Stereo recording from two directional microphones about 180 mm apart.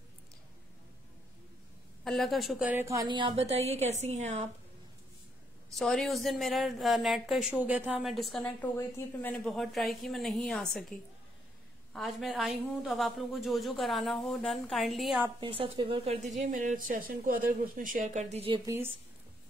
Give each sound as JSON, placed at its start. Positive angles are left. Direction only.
{"t": 2.0, "sound": "a woman's voice", "side_deg": 0}
{"t": 2.7, "sound": "a woman's voice", "side_deg": -15}
{"t": 5.8, "sound": "a woman's voice", "side_deg": 0}
{"t": 15.4, "sound": "speech", "side_deg": -30}
{"t": 16.3, "sound": "speech", "side_deg": -45}